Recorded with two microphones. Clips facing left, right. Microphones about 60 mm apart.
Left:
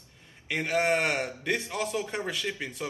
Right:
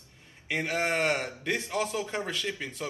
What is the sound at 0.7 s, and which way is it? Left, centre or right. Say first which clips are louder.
A man's voice: left 2 dB; centre.